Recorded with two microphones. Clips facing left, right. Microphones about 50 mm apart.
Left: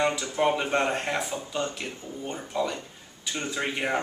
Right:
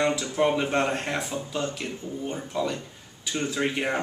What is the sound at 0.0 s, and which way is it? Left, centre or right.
Speech, centre.